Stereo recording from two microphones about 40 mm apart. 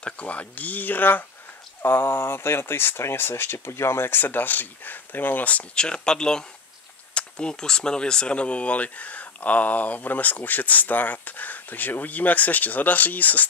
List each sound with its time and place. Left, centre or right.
0.0 s speech: left
1.8 s speech: left
4.2 s speech: left
5.8 s speech: left